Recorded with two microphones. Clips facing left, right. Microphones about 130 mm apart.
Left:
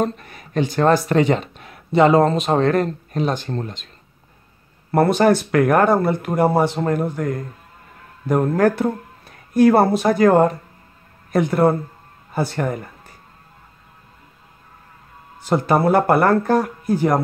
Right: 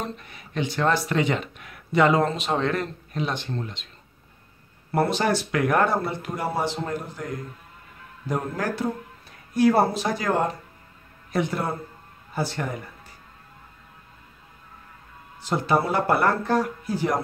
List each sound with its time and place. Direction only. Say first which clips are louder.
0.0 s speech: left 11 dB; 45° left (ahead or behind)
4.9 s speech: left 7 dB; 55° left (ahead or behind)
8.3 s speech: left 11 dB; 55° left (ahead or behind)
15.4 s speech: left 6 dB; 50° left (ahead or behind)